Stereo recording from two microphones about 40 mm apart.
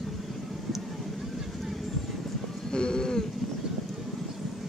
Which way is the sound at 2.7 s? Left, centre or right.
Centre.